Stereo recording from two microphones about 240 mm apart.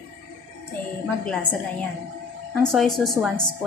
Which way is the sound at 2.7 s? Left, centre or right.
Centre.